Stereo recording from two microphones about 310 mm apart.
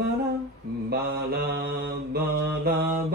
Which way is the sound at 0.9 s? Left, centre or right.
Right.